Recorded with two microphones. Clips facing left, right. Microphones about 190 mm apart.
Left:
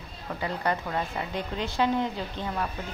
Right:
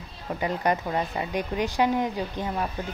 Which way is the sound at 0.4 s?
20° right (ahead or behind).